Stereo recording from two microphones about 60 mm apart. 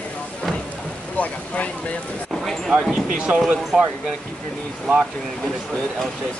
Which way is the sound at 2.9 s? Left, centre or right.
Centre.